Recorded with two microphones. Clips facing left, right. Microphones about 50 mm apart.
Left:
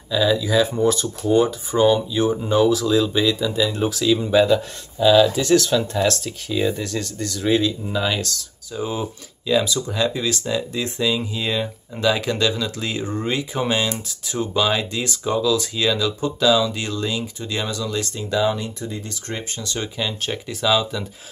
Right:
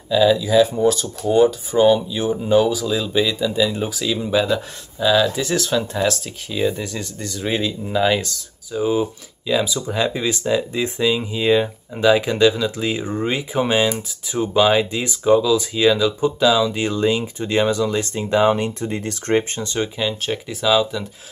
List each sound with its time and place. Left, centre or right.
0.1 s speech: centre; by 19.6 s right
19.6 s speech: right
20.0 s speech: centre